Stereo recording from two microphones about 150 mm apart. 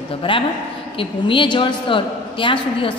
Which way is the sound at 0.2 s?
35° left (ahead or behind).